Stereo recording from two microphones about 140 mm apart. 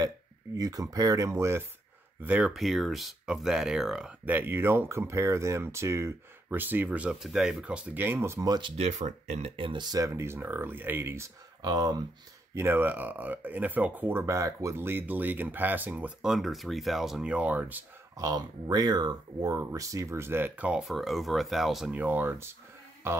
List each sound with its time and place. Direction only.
0.6 s speech: 25° right (ahead or behind)
2.2 s speech: 10° right (ahead or behind)
8.7 s speech: 55° right (ahead or behind)
9.6 s speech: 35° right (ahead or behind); by 11.2 s 15° right (ahead or behind)
11.6 s speech: 30° right (ahead or behind)
12.5 s speech: 15° right (ahead or behind)
18.1 s speech: 25° right (ahead or behind)
23.0 s music: 20° right (ahead or behind)